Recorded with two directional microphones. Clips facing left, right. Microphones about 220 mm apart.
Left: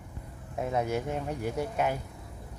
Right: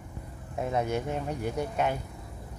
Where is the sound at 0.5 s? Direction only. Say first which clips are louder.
Right 1 dB; centre (ahead or behind).